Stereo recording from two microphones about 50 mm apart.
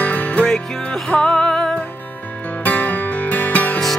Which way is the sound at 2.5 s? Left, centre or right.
Left.